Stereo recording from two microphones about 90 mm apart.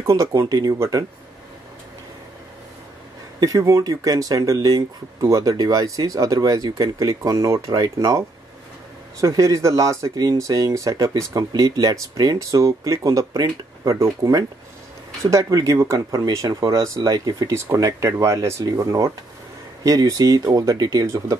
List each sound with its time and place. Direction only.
0.0 s speech: 35° right (ahead or behind)
3.3 s speech: 40° right (ahead or behind)
9.2 s speech: 40° right (ahead or behind)